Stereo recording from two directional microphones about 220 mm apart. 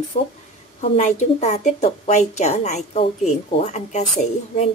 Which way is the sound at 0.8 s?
30° left (ahead or behind).